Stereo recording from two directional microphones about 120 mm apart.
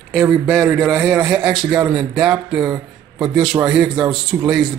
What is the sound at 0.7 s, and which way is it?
Speech, 5° left (ahead or behind).